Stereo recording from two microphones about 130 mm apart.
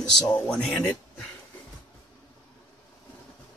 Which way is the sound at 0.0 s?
5° left (ahead or behind).